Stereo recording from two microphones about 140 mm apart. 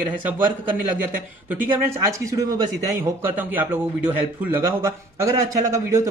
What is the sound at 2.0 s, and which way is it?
A man's voice, 25° right (ahead or behind).